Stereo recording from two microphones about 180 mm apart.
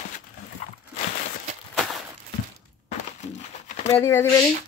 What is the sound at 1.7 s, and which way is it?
Walk, centre (ahead or behind).